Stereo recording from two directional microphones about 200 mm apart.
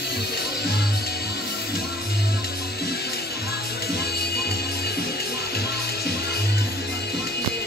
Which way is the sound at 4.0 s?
50° left (ahead or behind).